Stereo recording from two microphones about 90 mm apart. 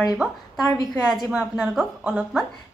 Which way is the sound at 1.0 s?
Centre (ahead or behind).